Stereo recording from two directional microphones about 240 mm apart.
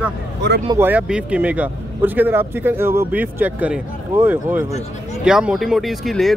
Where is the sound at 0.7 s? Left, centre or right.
Centre.